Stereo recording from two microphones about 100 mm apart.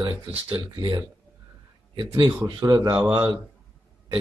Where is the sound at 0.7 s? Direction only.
40° right (ahead or behind).